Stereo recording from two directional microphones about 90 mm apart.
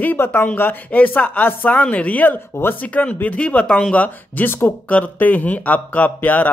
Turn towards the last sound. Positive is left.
turn(degrees=20)  # may be behind; listen again after turning